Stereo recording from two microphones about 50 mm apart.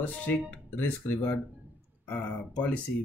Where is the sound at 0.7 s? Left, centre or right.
Left.